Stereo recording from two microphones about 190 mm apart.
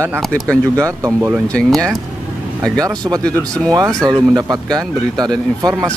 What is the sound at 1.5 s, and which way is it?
Speech, 5° left (ahead or behind).